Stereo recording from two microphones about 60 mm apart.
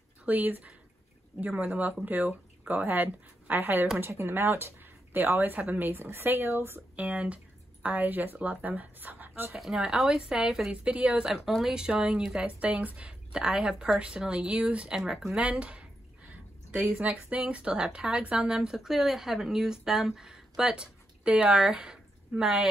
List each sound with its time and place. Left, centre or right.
0.2 s speech: right
7.0 s speech: right
9.6 s speech: centre
11.2 s speech: centre
15.0 s speech: centre
15.3 s a sound: centre
17.0 s speech: right